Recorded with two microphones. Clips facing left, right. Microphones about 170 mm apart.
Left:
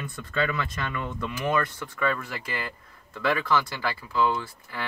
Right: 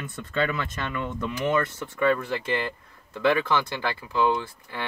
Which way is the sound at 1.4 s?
25° right (ahead or behind).